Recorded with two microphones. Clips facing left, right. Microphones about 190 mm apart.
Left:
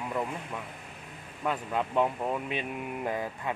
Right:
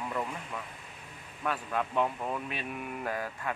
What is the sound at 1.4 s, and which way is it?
Speech, 20° left (ahead or behind).